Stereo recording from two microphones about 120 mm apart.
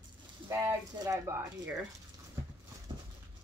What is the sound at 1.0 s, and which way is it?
Speech, 25° right (ahead or behind).